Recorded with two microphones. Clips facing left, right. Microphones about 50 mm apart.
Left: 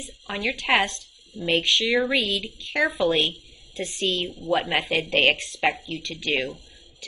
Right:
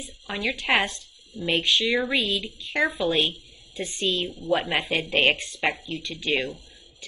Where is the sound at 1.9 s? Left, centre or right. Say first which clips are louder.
Left 2 dB; centre.